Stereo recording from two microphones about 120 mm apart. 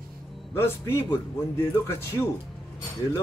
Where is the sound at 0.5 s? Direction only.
20° left (ahead or behind).